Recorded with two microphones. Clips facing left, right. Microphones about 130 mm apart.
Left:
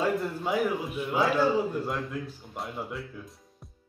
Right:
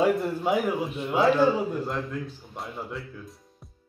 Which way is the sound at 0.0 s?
20° right (ahead or behind).